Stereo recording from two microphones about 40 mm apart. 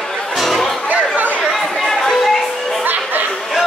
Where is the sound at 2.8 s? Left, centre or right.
Right.